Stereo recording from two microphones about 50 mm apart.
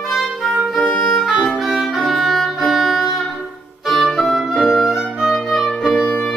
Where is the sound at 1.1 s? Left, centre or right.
Centre.